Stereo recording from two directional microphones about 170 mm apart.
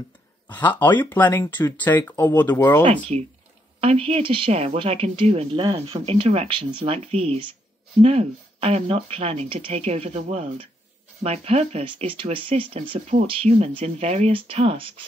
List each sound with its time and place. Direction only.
1.1 s speech: 10° left (ahead or behind)
2.8 s speech: 40° right (ahead or behind)